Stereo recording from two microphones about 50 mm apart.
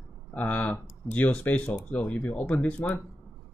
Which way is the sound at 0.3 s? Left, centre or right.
Left.